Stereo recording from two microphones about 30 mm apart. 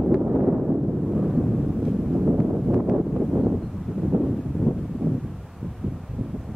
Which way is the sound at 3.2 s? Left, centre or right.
Right.